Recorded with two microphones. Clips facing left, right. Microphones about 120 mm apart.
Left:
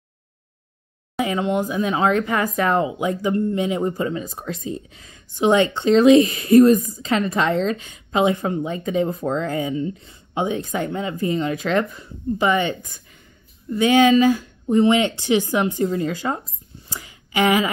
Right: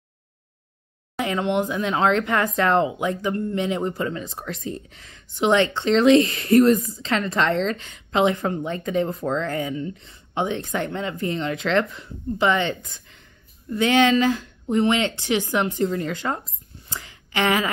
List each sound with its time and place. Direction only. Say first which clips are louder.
1.1 s speech: left 1 dB; 5° left (ahead or behind)
13.7 s speech: left 3 dB; 10° left (ahead or behind)
16.9 s a sound: left 3 dB; 10° left (ahead or behind)